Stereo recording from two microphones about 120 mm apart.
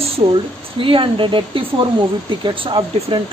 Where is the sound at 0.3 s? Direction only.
45° right (ahead or behind).